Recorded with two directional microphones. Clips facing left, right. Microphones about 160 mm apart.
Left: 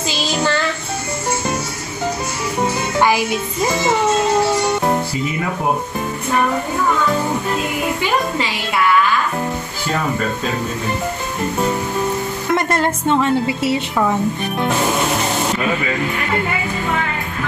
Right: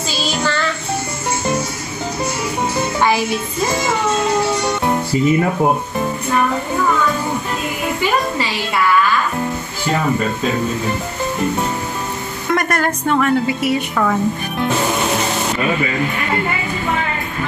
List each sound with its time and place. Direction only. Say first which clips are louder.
3.0 s music: left 1 dB; 15° left (ahead or behind)
12.5 s a woman's voice: even; 25° left (ahead or behind)